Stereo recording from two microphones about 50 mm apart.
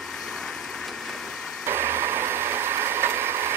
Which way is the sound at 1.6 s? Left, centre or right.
Right.